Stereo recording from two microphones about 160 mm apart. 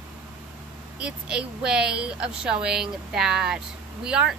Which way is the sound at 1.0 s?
5° right (ahead or behind).